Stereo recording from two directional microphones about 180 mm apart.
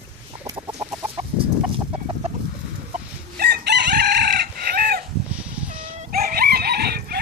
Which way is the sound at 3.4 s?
65° right (ahead or behind).